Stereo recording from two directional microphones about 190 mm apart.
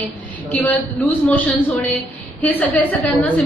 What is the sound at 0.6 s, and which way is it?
A woman's voice, 10° left (ahead or behind).